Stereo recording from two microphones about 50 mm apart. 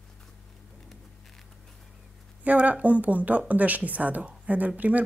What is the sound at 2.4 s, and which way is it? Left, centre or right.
Speech, right.